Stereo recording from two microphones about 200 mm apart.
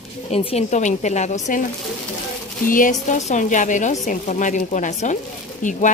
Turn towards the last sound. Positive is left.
turn(degrees=40)  # may be behind; listen again after turning